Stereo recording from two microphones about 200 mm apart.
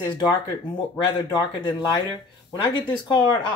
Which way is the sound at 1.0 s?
20° left (ahead or behind).